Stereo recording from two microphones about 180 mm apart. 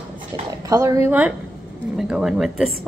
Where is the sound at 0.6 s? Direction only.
15° right (ahead or behind).